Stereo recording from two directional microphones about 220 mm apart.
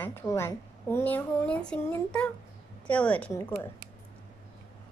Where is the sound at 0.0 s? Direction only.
15° left (ahead or behind).